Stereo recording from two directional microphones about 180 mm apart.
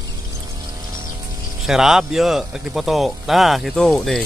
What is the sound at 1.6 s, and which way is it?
Speech, 5° right (ahead or behind).